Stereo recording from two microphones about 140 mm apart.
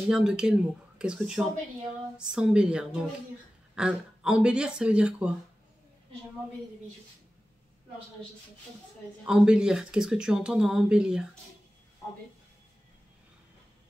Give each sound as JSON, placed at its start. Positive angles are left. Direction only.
{"t": 0.1, "sound": "speech", "side_deg": -5}
{"t": 9.2, "sound": "speech", "side_deg": -5}